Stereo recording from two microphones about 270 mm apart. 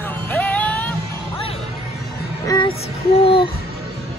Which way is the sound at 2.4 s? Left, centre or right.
Centre.